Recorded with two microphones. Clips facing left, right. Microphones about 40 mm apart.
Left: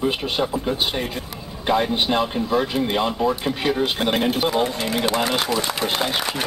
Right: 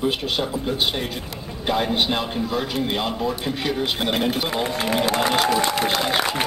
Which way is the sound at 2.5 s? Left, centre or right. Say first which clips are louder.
Left 4 dB; centre.